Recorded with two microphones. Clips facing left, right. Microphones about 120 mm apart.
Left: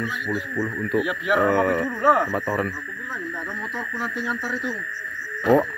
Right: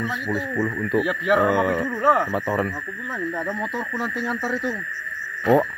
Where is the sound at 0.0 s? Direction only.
20° right (ahead or behind).